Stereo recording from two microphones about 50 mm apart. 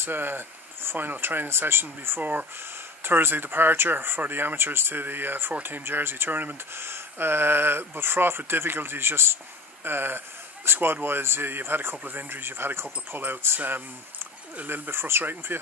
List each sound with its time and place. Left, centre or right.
0.0 s speech: right
14.7 s speech: right